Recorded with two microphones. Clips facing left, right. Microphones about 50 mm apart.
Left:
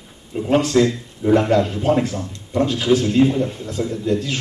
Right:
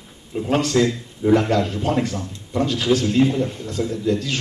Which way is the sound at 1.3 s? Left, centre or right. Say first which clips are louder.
Left 2 dB; left.